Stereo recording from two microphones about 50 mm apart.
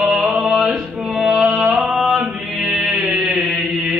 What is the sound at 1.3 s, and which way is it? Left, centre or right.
Music, centre.